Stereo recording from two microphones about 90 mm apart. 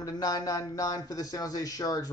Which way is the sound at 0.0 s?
40° left (ahead or behind).